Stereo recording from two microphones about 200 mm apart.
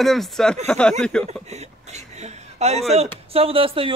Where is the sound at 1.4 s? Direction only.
35° right (ahead or behind).